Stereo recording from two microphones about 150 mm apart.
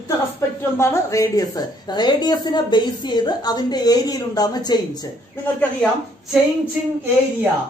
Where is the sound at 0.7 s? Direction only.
20° left (ahead or behind).